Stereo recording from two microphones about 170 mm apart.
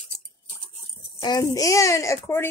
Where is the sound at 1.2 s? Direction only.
25° left (ahead or behind).